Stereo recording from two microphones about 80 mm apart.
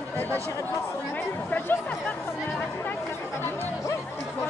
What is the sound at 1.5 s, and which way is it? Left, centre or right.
Speech, left.